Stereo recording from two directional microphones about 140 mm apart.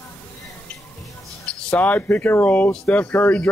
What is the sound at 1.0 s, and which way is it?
Speech, 10° left (ahead or behind).